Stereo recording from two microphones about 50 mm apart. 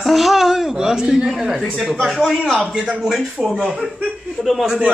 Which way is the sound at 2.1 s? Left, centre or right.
Centre.